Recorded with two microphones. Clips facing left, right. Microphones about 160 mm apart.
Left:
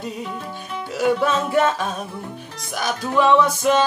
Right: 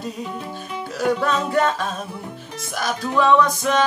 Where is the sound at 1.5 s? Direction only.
5° left (ahead or behind).